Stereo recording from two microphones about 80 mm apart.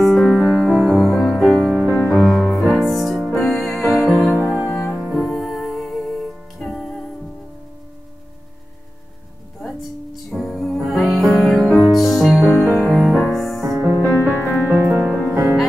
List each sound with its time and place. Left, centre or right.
0.1 s music: centre
2.2 s music: centre
10.6 s music: centre
14.7 s music: right